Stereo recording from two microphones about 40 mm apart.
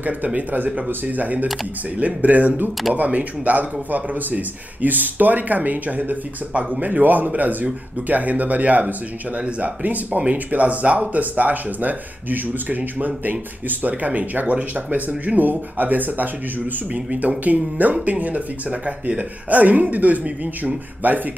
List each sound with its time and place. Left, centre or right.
1.0 s speech: right
16.9 s speech: right